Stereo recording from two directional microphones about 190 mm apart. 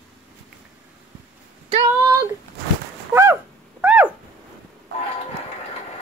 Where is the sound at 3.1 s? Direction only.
15° right (ahead or behind).